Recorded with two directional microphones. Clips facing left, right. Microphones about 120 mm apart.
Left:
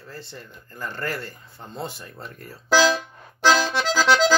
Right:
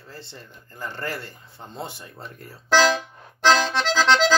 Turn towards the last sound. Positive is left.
turn(degrees=10)  # may be behind; listen again after turning